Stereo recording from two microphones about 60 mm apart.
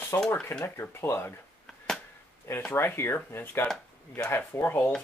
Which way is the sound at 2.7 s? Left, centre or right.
Left.